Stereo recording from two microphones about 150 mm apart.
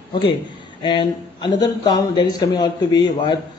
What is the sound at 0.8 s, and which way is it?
Speech, 30° left (ahead or behind).